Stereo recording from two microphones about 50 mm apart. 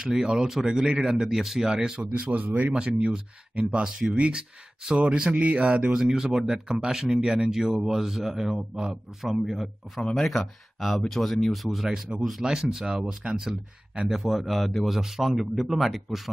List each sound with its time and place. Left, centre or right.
0.0 s speech: centre
1.2 s speech: centre
2.1 s speech: right
5.9 s speech: centre
14.9 s speech: centre